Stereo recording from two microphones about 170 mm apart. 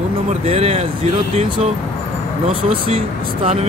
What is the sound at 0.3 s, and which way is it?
Speech, 40° right (ahead or behind).